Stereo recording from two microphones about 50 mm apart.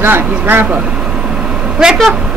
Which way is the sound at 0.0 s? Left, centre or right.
Right.